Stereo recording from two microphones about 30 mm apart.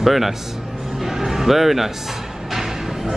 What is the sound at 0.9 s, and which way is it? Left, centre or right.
Music, centre.